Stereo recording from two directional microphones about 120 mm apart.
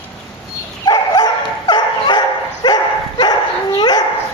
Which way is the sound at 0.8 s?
35° left (ahead or behind).